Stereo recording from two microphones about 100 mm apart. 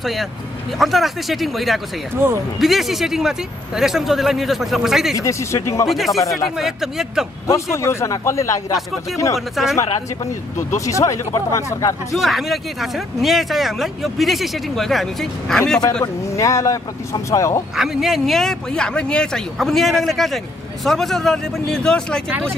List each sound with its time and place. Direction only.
0.0 s speech: centre (ahead or behind)
5.1 s speech: 30° left (ahead or behind)
5.9 s speech: centre (ahead or behind)
7.4 s a man's voice: 30° left (ahead or behind)
9.6 s speech: centre (ahead or behind)
10.7 s speech: 30° left (ahead or behind)
12.1 s speech: centre (ahead or behind)
16.3 s speech: 30° left (ahead or behind)
17.7 s speech: 5° right (ahead or behind)